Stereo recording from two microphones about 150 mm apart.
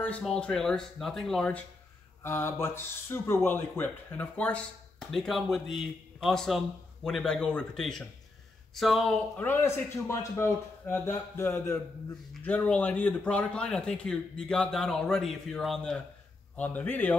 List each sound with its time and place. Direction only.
0.0 s a man's voice: 5° left (ahead or behind)
2.2 s a man's voice: 15° left (ahead or behind)